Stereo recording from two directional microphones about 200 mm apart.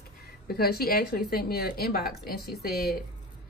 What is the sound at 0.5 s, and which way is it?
A woman's voice, 50° left (ahead or behind).